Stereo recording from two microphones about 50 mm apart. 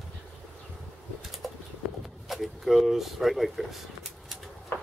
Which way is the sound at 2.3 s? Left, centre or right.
Centre.